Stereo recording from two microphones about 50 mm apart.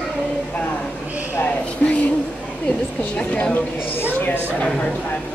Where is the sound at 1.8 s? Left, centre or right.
Centre.